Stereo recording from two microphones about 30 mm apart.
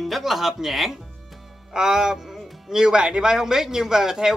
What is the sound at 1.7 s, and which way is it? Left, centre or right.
Music, right.